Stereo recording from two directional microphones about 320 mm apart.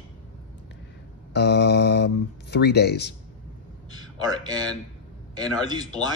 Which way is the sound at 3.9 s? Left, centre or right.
Centre.